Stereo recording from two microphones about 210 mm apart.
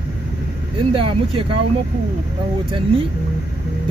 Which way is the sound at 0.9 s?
25° right (ahead or behind).